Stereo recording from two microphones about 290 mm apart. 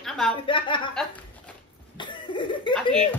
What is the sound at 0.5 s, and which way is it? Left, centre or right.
Speech, centre.